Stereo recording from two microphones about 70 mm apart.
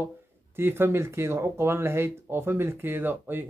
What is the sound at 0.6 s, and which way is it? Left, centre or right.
Speech, right.